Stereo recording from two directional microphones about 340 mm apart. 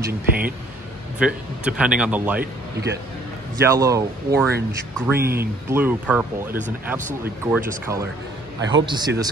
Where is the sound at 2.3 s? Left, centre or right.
Right.